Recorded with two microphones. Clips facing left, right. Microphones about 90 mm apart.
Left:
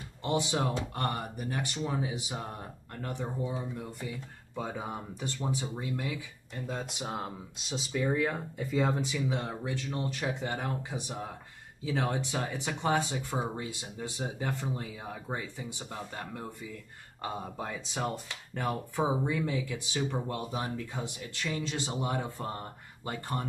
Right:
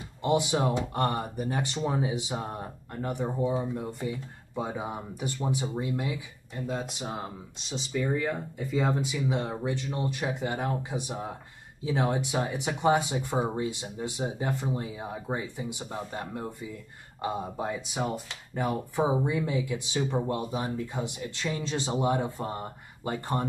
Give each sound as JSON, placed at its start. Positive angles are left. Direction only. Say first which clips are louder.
{"t": 0.2, "sound": "speech", "louder": "right 5 dB", "side_deg": -15}
{"t": 3.3, "sound": "speech", "louder": "right 9 dB", "side_deg": -30}
{"t": 4.6, "sound": "speech", "louder": "right 3 dB", "side_deg": -15}
{"t": 6.5, "sound": "speech", "louder": "right 4 dB", "side_deg": -5}
{"t": 9.3, "sound": "speech", "louder": "right 4 dB", "side_deg": -20}